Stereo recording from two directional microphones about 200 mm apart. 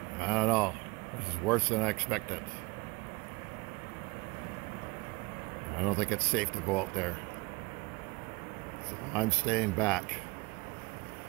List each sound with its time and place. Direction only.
0.2 s speech: 5° left (ahead or behind)
5.8 s speech: 5° left (ahead or behind)
9.1 s speech: 10° left (ahead or behind)